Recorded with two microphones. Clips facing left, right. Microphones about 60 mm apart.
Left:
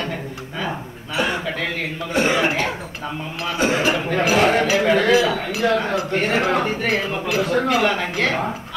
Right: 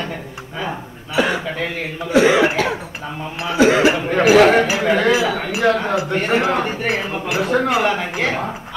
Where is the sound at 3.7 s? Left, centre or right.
Right.